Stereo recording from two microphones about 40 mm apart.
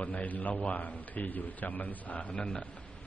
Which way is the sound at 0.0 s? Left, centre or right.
Left.